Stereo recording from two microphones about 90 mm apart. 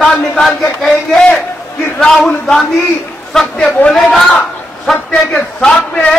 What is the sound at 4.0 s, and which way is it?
Speech, centre (ahead or behind).